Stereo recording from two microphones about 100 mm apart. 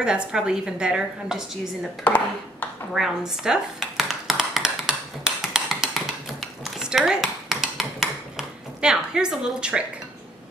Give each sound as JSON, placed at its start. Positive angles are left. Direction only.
{"t": 0.0, "sound": "a woman's voice", "side_deg": -10}
{"t": 2.0, "sound": "speech", "side_deg": 15}
{"t": 2.9, "sound": "a sound", "side_deg": -5}